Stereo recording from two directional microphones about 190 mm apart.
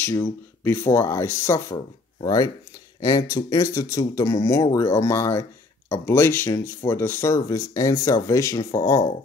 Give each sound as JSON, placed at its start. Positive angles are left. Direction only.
{"t": 0.7, "sound": "speech", "side_deg": 10}